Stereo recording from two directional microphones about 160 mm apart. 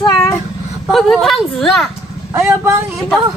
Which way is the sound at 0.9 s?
Centre (ahead or behind).